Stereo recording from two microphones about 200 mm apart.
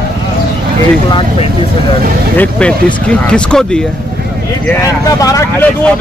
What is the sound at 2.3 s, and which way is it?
Speech, 5° left (ahead or behind).